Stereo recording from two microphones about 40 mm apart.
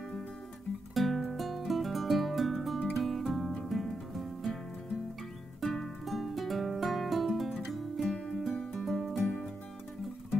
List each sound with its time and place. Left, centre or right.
0.9 s music: centre
5.6 s music: centre
8.0 s music: centre
8.7 s music: centre